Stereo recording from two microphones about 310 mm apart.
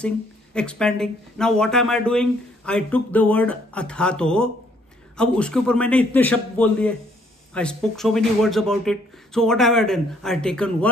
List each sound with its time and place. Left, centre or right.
0.6 s speech: centre